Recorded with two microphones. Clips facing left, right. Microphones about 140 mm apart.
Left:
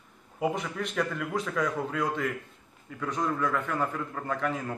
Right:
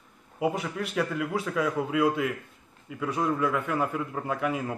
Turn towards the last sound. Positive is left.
turn(degrees=-10)  # may be behind; listen again after turning